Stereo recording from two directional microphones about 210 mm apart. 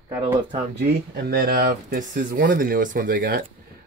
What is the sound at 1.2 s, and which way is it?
Speech, 45° right (ahead or behind).